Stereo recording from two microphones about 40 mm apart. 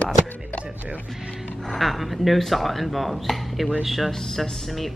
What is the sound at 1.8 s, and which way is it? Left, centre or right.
Speech, centre.